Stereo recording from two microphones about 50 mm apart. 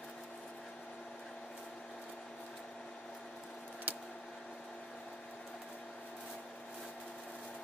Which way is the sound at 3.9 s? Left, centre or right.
Right.